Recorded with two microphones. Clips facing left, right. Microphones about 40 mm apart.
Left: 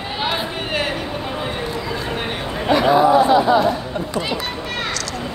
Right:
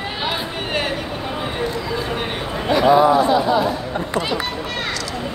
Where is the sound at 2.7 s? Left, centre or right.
Left.